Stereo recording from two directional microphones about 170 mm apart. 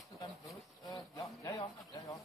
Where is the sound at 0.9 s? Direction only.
20° left (ahead or behind).